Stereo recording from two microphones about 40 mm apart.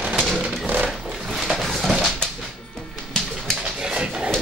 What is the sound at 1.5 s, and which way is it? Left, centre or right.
Dog, centre.